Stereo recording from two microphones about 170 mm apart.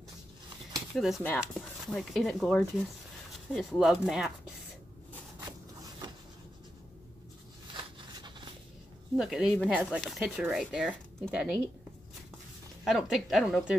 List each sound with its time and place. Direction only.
0.9 s speech: centre (ahead or behind)
7.7 s a sound: 30° right (ahead or behind)
9.1 s speech: 5° right (ahead or behind)
12.8 s speech: centre (ahead or behind)